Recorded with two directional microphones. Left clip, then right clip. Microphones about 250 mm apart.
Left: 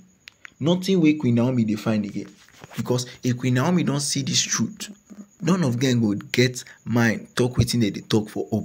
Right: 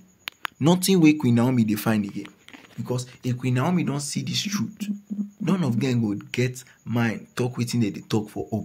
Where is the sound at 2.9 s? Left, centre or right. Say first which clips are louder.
Left 5 dB; centre.